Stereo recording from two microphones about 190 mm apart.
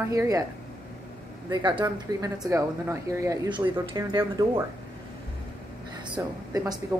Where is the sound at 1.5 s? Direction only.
20° right (ahead or behind).